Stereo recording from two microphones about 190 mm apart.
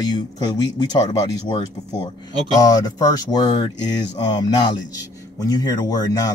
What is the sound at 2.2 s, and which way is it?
A man's voice, 20° left (ahead or behind).